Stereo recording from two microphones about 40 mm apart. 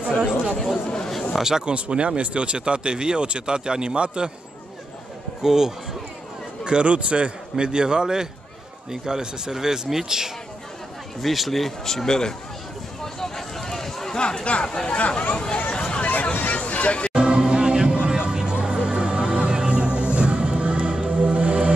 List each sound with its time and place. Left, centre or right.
0.8 s a sound: centre
1.3 s speech: centre
1.7 s speech: right
5.4 s speech: centre
6.6 s speech: right
11.2 s speech: centre
13.0 s a sound: centre
14.2 s speech: left
15.0 s speech: left
15.6 s a sound: left
16.3 s vehicle: left
17.1 s music: right